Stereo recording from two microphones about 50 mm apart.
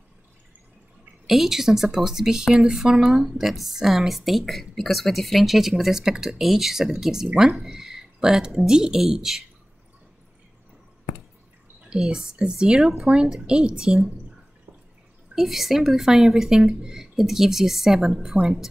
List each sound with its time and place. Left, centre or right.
1.2 s a woman's voice: centre
7.5 s a sound: centre
8.6 s a woman's voice: centre
11.9 s a woman's voice: centre
12.8 s a woman's voice: centre
15.3 s a woman's voice: centre